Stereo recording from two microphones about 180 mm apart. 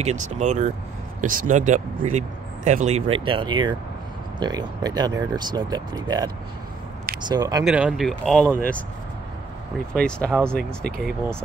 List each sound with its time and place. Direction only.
0.0 s speech: 40° right (ahead or behind); by 7.6 s 20° right (ahead or behind)
7.6 s speech: 5° right (ahead or behind)
9.9 s speech: 5° left (ahead or behind)